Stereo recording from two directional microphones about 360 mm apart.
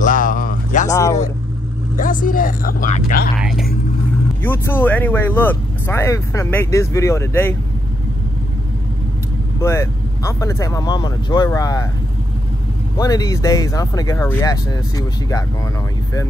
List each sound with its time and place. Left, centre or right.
0.0 s a sound: left
0.8 s speech: centre
2.0 s speech: left
3.3 s speech: centre
9.6 s speech: centre
12.9 s speech: centre